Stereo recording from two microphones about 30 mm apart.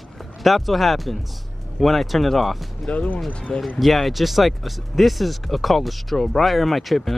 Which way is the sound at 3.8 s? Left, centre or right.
Centre.